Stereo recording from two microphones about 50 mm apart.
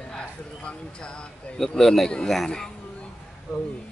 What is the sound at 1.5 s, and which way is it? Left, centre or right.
Speech, centre.